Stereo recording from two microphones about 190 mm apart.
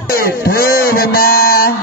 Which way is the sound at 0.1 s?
55° left (ahead or behind).